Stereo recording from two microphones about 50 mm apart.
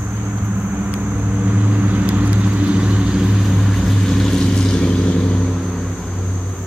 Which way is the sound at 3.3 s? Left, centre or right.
Centre.